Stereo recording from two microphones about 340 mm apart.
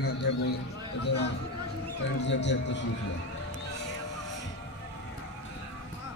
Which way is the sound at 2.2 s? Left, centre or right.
Left.